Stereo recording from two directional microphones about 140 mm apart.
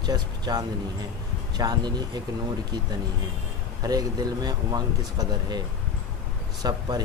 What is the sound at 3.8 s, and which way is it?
Speech, 25° right (ahead or behind).